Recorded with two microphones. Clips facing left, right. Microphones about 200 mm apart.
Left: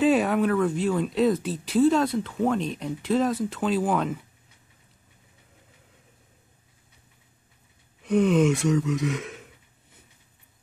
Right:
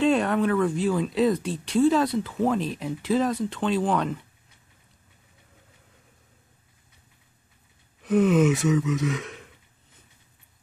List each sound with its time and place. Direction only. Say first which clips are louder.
0.0 s speech: left 1 dB; 5° left (ahead or behind)
8.0 s speech: right 1 dB; centre (ahead or behind)